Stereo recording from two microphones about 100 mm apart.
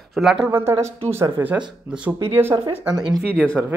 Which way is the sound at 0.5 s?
25° right (ahead or behind).